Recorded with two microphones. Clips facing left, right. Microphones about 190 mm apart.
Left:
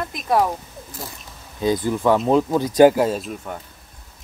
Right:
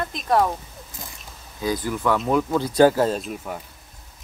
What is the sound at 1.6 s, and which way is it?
Speech, 25° left (ahead or behind).